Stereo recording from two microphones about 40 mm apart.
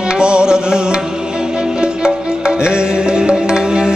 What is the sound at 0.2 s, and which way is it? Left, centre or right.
Music, right.